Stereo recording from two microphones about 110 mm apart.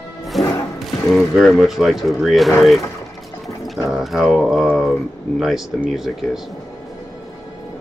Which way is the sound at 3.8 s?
Centre (ahead or behind).